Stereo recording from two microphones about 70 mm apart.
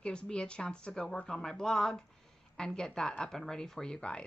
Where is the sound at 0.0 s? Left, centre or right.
Centre.